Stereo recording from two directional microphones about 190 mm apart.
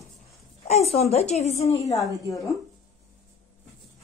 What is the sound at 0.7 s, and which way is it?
Speech, 35° left (ahead or behind).